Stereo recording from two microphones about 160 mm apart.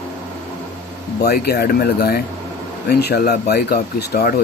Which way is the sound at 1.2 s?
80° left.